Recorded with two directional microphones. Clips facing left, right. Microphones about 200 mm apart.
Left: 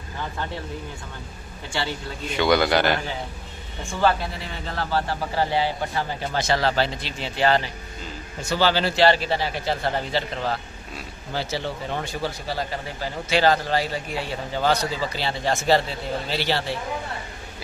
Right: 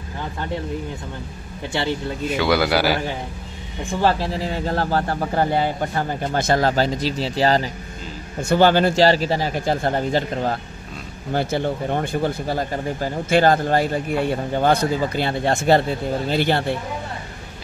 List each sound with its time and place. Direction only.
2.3 s a man's voice: 5° right (ahead or behind)
4.0 s speech: 30° right (ahead or behind)
8.4 s speech: 55° right (ahead or behind)